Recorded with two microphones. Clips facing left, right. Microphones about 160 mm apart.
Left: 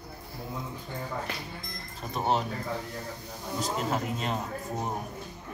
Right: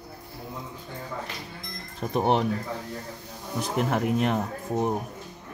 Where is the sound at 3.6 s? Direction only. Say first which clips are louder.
Right 4 dB; 60° right (ahead or behind).